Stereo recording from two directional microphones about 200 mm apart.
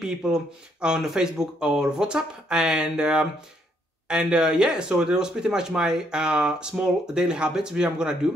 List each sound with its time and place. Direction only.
0.0 s speech: 5° right (ahead or behind)